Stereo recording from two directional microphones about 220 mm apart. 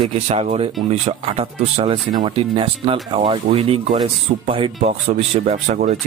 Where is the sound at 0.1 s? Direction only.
30° right (ahead or behind).